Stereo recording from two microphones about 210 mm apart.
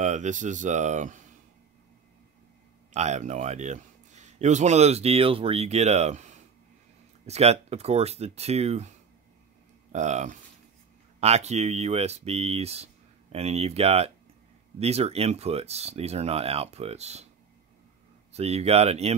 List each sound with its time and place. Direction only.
0.0 s speech: 35° right (ahead or behind)
2.9 s speech: 35° right (ahead or behind)
9.9 s speech: 35° right (ahead or behind)
18.3 s speech: 30° right (ahead or behind)